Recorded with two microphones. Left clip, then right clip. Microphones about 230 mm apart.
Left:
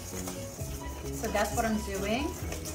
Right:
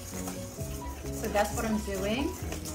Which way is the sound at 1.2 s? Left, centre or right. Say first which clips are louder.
Even; centre.